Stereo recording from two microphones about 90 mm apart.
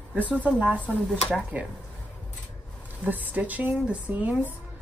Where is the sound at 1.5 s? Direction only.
20° right (ahead or behind).